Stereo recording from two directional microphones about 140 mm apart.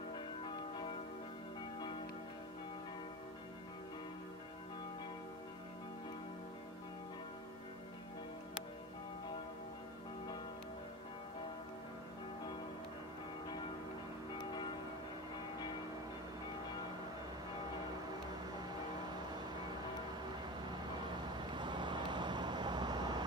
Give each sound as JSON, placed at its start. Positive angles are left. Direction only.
{"t": 0.5, "sound": "church bell", "side_deg": 35}
{"t": 18.1, "sound": "vehicle", "side_deg": -30}
{"t": 20.7, "sound": "vehicle", "side_deg": -30}